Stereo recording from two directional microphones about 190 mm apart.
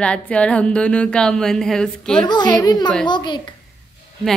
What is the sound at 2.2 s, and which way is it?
A child's voice, 20° left (ahead or behind).